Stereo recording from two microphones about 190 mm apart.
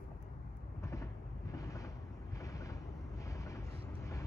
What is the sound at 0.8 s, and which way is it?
Vehicle, 15° left (ahead or behind).